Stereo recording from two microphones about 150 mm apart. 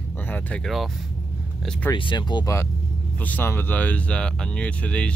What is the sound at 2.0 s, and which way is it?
Speech, 30° left (ahead or behind).